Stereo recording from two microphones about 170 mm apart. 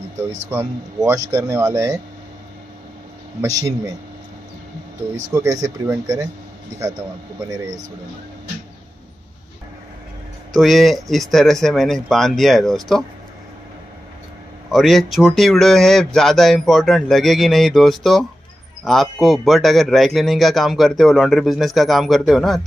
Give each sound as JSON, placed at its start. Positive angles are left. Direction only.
{"t": 0.5, "sound": "speech", "side_deg": -20}
{"t": 3.3, "sound": "speech", "side_deg": -20}
{"t": 5.3, "sound": "speech", "side_deg": -20}
{"t": 10.5, "sound": "speech", "side_deg": 0}
{"t": 14.7, "sound": "speech", "side_deg": 0}